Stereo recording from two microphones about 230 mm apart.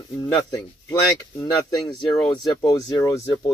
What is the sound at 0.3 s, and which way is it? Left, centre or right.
Speech, centre.